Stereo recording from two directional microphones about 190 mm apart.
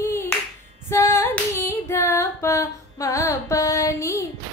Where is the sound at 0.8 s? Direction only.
15° left (ahead or behind).